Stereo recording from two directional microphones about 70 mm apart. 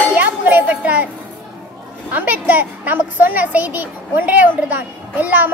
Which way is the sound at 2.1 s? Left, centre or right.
Right.